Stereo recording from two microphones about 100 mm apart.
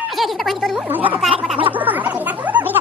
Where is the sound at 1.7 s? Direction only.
15° right (ahead or behind).